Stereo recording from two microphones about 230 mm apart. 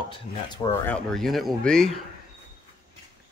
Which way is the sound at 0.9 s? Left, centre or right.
Centre.